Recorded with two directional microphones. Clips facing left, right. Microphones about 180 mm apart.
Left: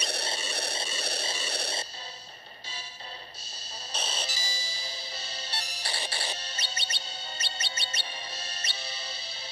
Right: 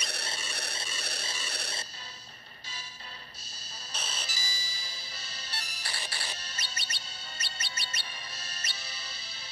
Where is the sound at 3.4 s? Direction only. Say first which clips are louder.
Left 5 dB; 30° left (ahead or behind).